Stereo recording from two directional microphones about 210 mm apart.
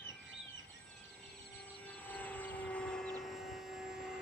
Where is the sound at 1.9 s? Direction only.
5° left (ahead or behind).